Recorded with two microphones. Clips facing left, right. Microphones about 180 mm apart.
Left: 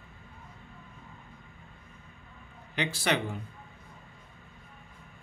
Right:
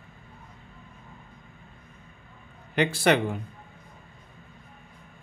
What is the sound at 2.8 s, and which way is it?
Speech, 55° right (ahead or behind).